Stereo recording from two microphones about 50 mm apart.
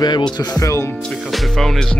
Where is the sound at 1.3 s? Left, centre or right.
Centre.